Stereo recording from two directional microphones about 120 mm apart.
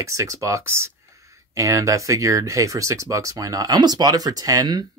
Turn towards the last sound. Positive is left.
turn(degrees=-30)  # may be behind; listen again after turning